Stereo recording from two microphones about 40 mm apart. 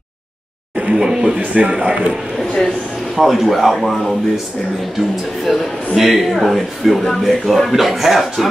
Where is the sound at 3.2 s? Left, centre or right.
Centre.